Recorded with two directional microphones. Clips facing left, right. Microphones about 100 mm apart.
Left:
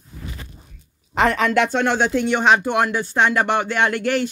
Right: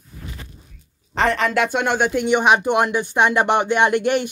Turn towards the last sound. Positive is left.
turn(degrees=-20)  # may be behind; listen again after turning